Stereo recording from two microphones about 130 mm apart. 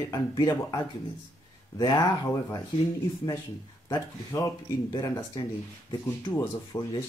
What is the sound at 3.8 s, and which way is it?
Speech, 25° left (ahead or behind).